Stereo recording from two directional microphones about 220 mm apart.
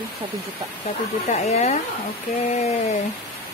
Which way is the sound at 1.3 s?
30° left (ahead or behind).